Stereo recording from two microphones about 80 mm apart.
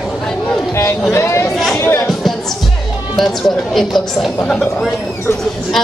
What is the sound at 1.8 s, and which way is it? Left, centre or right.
Music, left.